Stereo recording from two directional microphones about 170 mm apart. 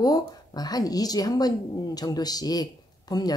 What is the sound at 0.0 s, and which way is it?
Speech, 25° left (ahead or behind).